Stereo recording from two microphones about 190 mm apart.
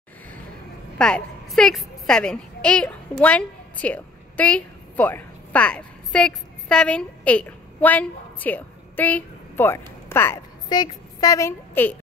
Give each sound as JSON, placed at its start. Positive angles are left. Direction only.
{"t": 0.9, "sound": "a woman's voice", "side_deg": 5}